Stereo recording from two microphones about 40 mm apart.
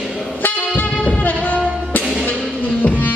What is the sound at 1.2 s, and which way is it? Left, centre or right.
Music, left.